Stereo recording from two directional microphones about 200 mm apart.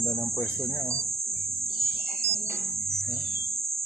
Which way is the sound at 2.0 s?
Centre (ahead or behind).